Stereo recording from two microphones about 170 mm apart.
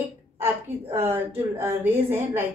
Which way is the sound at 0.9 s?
15° right (ahead or behind).